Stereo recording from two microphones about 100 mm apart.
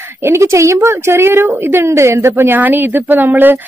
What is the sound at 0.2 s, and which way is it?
Speech, 30° right (ahead or behind).